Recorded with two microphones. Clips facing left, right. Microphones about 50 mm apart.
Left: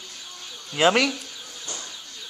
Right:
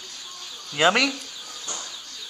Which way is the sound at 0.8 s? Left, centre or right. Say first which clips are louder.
Even; centre.